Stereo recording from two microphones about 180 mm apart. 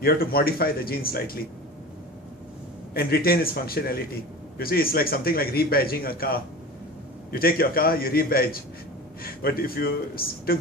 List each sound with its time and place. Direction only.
0.0 s a man's voice: 55° left (ahead or behind)
2.9 s a man's voice: 55° left (ahead or behind)